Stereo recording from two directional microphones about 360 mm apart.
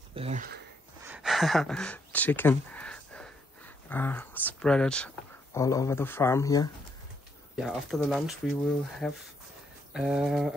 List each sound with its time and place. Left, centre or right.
0.1 s speech: centre
1.0 s speech: centre